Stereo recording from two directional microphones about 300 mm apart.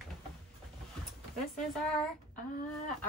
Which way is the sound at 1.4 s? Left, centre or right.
Centre.